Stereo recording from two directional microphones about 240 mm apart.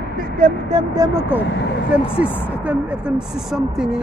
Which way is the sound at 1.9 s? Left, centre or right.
Centre.